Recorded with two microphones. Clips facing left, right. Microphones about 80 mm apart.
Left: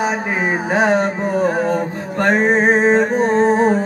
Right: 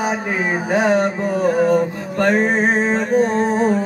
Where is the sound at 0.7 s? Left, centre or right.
Left.